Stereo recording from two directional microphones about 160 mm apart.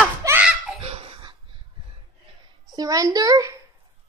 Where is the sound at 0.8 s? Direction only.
35° right (ahead or behind).